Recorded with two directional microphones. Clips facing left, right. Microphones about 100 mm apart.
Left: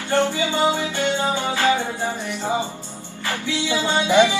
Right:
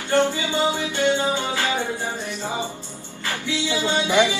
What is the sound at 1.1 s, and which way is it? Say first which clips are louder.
Music: even; 20° left (ahead or behind).